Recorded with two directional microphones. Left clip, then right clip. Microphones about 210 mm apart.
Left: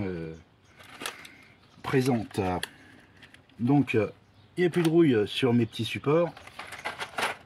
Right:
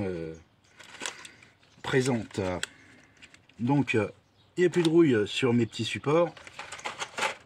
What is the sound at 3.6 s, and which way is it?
Speech, 25° right (ahead or behind).